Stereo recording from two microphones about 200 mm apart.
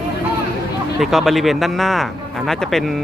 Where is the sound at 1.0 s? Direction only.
Centre (ahead or behind).